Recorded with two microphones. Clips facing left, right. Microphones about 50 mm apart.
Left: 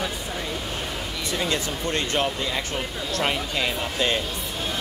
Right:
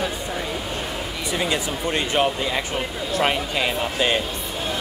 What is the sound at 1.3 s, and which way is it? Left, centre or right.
Speech, centre.